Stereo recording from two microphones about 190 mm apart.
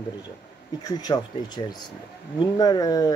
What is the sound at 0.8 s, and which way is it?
Speech, 20° left (ahead or behind).